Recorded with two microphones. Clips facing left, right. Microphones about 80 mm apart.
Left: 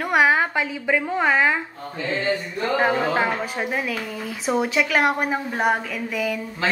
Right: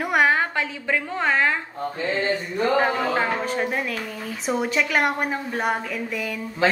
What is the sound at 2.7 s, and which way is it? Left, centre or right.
A woman's voice, centre.